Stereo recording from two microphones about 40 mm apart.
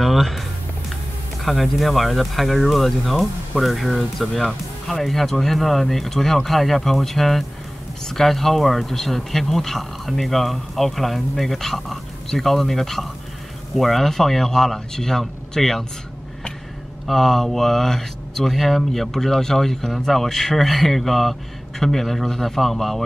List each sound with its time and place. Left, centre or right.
0.0 s a sound: centre
1.4 s speech: centre
17.1 s speech: centre